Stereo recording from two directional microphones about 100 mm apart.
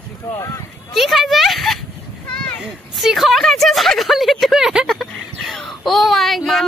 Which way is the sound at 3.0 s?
Centre (ahead or behind).